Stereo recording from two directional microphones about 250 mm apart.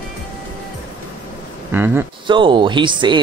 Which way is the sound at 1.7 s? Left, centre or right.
Centre.